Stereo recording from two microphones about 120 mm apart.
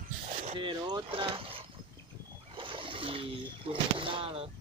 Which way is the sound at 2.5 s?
45° right (ahead or behind).